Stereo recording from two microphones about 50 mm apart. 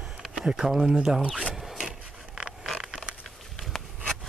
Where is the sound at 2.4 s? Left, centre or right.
Centre.